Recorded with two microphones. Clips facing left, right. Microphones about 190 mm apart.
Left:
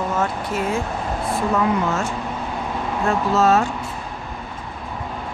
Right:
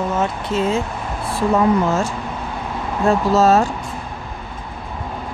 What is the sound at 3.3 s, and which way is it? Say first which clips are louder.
Speech: right 2 dB; 40° right (ahead or behind).